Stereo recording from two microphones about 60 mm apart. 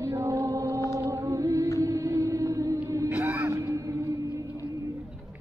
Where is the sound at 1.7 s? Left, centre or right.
Right.